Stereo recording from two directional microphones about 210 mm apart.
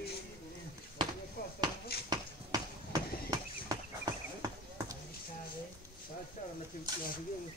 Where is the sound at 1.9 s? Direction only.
50° left (ahead or behind).